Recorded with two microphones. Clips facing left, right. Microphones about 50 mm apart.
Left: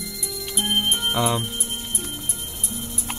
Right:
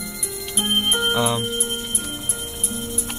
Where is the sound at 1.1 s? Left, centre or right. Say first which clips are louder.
Right 1 dB; centre.